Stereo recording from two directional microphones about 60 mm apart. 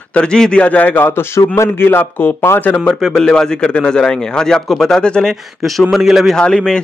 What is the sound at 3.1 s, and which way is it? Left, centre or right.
A man's voice, centre.